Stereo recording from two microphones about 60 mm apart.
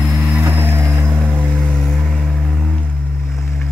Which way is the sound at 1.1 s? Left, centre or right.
Right.